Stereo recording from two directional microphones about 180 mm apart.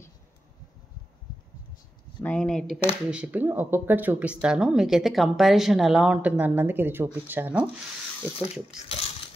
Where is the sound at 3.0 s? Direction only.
5° right (ahead or behind).